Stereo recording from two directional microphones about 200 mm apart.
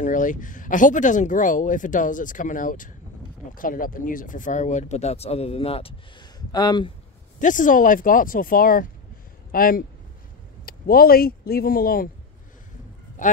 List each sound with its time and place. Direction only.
0.0 s speech: 40° left (ahead or behind); by 6.9 s 20° left (ahead or behind)
7.3 s speech: 40° left (ahead or behind)
13.2 s speech: 40° left (ahead or behind)